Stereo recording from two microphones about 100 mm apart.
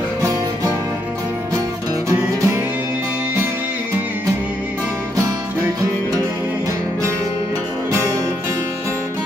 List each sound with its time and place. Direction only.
2.0 s music: 30° right (ahead or behind)